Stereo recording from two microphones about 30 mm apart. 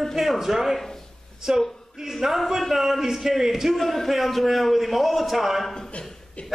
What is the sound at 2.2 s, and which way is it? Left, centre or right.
A man's voice, centre.